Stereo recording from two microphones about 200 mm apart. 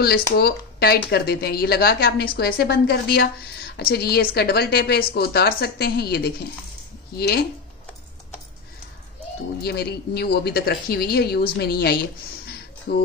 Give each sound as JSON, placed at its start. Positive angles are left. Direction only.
{"t": 0.3, "sound": "speech", "side_deg": 50}
{"t": 9.6, "sound": "speech", "side_deg": 55}
{"t": 12.9, "sound": "music", "side_deg": 55}